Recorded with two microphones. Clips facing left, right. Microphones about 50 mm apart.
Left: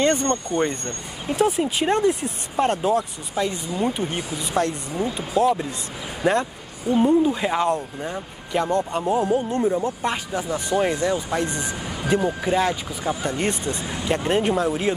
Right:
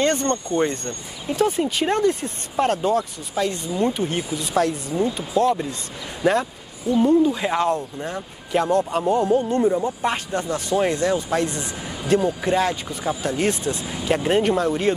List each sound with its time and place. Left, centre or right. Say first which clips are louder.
0.0 s speech: even; centre
7.0 s speech: right 1 dB; centre
7.4 s speech: even; centre
10.1 s speech: right 1 dB; centre
11.5 s speech: left 2 dB; centre
12.4 s speech: right 1 dB; centre